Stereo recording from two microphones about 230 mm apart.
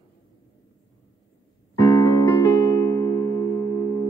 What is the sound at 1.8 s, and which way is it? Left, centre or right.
Keyboard, centre.